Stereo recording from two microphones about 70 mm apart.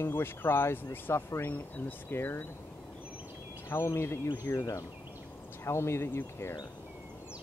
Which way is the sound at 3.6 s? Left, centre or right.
Left.